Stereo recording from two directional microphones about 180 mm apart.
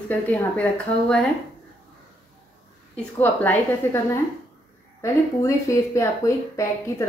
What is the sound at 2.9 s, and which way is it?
Speech, 10° left (ahead or behind).